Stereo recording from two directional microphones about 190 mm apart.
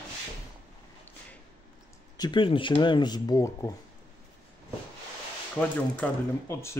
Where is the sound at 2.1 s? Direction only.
25° left (ahead or behind).